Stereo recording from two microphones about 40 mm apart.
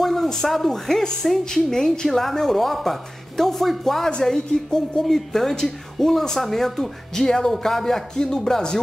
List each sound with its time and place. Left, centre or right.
0.0 s speech: centre
1.9 s a woman's voice: centre